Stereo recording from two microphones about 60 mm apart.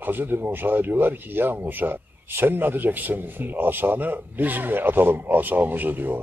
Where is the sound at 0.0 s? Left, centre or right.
Right.